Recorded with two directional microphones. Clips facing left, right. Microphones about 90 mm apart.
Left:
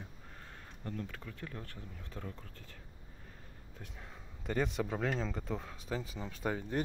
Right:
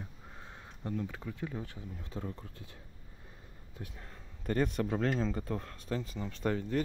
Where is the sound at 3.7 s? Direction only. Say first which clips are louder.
Right 3 dB; centre (ahead or behind).